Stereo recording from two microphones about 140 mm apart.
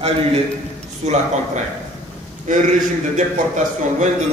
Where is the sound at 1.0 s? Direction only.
55° right (ahead or behind).